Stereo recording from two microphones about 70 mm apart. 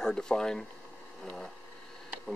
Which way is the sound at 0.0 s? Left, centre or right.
Centre.